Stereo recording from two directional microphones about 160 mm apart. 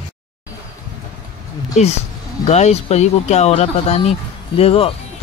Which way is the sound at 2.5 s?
45° left (ahead or behind).